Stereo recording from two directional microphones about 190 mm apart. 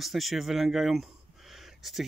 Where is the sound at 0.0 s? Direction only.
Centre (ahead or behind).